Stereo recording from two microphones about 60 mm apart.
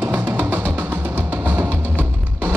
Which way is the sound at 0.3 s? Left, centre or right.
Right.